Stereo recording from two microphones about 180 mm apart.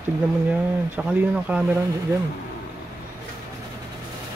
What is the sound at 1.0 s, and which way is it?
Speech, 5° right (ahead or behind).